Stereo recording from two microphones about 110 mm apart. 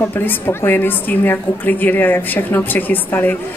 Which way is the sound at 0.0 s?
20° left (ahead or behind).